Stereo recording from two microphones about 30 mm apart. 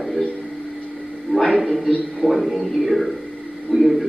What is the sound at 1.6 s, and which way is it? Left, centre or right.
Speech, centre.